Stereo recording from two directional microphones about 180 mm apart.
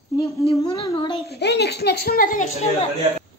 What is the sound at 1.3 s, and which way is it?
A woman's voice, 70° left (ahead or behind).